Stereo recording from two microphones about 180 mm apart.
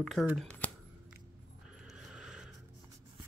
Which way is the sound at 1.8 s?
5° right (ahead or behind).